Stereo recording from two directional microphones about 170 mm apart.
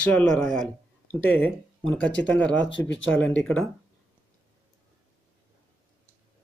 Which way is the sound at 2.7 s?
90° left.